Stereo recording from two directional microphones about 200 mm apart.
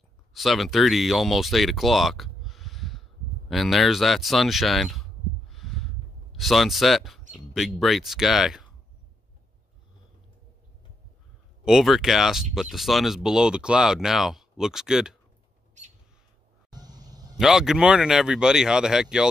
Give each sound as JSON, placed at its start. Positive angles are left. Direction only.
{"t": 0.3, "sound": "speech", "side_deg": 0}
{"t": 5.5, "sound": "a sound", "side_deg": 0}
{"t": 6.3, "sound": "speech", "side_deg": 0}
{"t": 11.6, "sound": "speech", "side_deg": 0}
{"t": 16.7, "sound": "a sound", "side_deg": -20}
{"t": 17.4, "sound": "speech", "side_deg": 0}